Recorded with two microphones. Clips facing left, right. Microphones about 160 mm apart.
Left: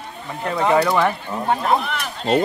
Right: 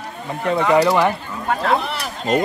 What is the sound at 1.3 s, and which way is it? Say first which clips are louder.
Speech: even; 25° left (ahead or behind).